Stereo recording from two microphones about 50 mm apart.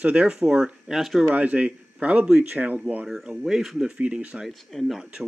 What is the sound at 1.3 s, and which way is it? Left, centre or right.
Speech, right.